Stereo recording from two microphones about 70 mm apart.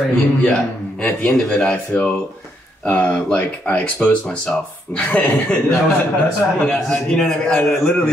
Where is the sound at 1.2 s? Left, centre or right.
Centre.